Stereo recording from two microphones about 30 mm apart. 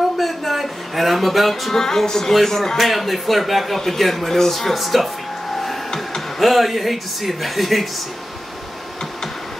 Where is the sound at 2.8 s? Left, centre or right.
Centre.